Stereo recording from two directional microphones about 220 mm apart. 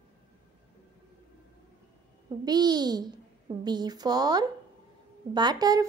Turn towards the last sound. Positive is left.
turn(degrees=-15)  # may be behind; listen again after turning